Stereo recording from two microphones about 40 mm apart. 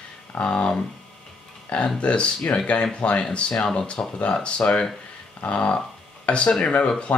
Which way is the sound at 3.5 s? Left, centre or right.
Centre.